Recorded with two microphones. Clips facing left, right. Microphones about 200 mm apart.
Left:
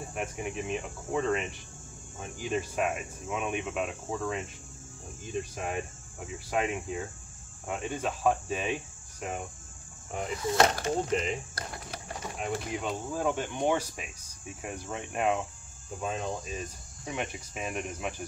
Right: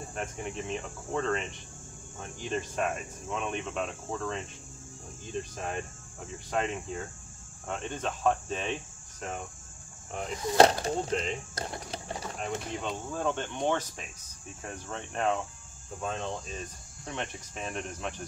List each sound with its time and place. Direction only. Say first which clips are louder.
0.1 s speech: left 2 dB; 10° left (ahead or behind)
10.6 s speech: right 5 dB; 30° right (ahead or behind)
11.0 s speech: left 2 dB; 5° left (ahead or behind)
11.6 s cricket: right 3 dB; 25° right (ahead or behind)
12.4 s speech: left 3 dB; 5° left (ahead or behind)